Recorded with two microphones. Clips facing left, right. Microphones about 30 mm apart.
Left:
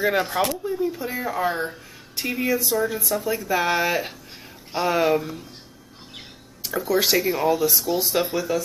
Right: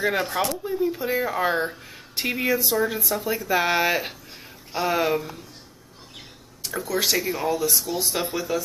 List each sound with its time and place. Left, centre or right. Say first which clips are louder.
0.0 s speech: left 2 dB; centre
0.5 s a woman's voice: even; centre; by 2.4 s right
2.4 s speech: left 1 dB; centre
4.7 s speech: left 2 dB; centre
6.6 s speech: left 3 dB; centre